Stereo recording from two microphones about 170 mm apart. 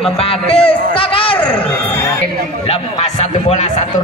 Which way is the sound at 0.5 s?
30° left (ahead or behind).